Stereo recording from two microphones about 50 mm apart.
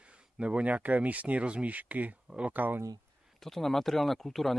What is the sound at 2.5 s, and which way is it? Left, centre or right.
Speech, right.